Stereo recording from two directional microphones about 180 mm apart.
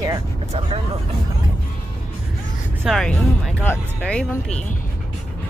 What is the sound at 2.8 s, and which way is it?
Speech, centre (ahead or behind).